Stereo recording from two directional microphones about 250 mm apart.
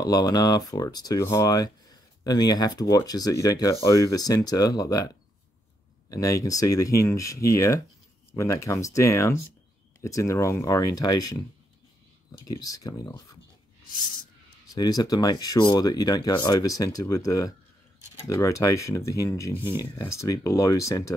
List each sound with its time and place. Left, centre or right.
0.0 s speech: centre
12.3 s speech: centre
14.7 s speech: centre